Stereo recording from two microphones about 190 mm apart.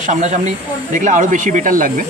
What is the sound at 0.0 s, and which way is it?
Speech, 40° right (ahead or behind).